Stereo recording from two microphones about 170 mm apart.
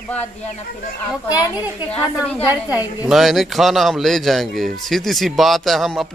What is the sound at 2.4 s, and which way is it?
Speech, 20° left (ahead or behind).